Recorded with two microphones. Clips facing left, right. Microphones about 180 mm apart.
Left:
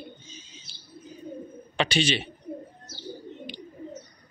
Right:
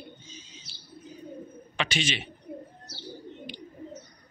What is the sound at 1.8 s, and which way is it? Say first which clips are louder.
Speech: left 5 dB; 30° left (ahead or behind).